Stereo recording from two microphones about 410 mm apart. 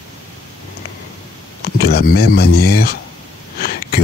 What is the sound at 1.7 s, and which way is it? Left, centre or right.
Speech, left.